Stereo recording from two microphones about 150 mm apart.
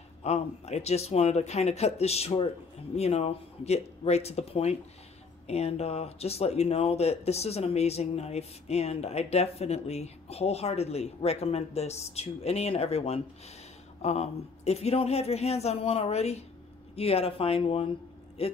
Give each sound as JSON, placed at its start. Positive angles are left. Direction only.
{"t": 0.2, "sound": "speech", "side_deg": 45}